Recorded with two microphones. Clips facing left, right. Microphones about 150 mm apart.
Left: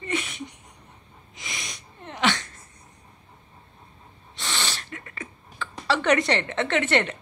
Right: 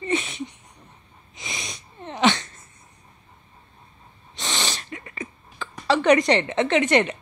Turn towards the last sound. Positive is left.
turn(degrees=-15)  # may be behind; listen again after turning